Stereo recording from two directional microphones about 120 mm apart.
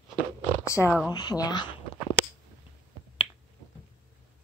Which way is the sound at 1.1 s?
35° left (ahead or behind).